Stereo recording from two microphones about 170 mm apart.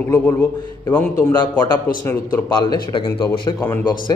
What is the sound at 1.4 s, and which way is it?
A man's voice, 25° left (ahead or behind).